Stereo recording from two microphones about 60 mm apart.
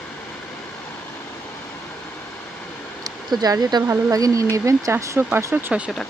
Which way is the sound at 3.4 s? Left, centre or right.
Right.